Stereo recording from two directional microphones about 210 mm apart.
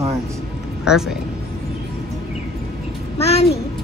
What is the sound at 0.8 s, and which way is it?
Speech, centre (ahead or behind).